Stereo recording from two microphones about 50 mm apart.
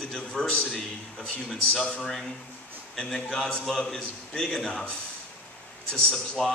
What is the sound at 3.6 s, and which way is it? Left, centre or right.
A man's voice, centre.